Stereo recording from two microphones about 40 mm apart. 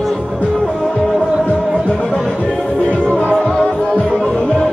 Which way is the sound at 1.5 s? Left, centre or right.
Left.